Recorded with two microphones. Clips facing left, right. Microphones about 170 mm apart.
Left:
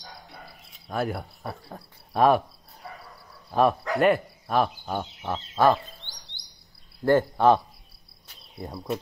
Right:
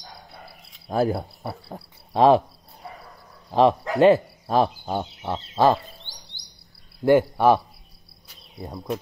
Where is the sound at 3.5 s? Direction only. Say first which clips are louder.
Right 4 dB; 20° right (ahead or behind).